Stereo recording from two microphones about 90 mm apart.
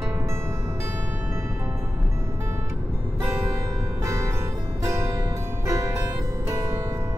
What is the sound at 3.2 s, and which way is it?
Music, 35° right (ahead or behind).